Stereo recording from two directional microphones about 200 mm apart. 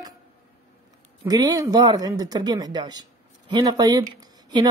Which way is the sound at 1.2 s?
20° right (ahead or behind).